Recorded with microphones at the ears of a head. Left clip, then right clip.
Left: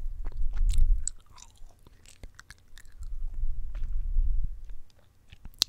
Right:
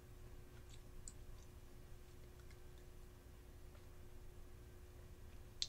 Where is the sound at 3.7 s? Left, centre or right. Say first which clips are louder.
Left 6 dB; left.